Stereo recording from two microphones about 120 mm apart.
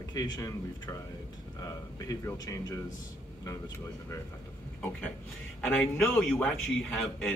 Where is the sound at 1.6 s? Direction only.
30° left (ahead or behind).